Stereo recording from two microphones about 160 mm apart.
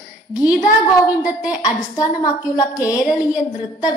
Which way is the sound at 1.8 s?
20° left (ahead or behind).